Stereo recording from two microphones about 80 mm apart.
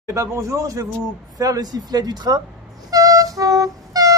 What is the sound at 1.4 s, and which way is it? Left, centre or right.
Speech, right.